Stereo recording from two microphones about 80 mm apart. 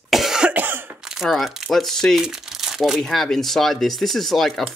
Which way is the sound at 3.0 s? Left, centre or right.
Centre.